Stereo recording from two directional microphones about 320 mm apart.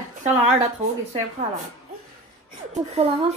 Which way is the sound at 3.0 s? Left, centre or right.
Centre.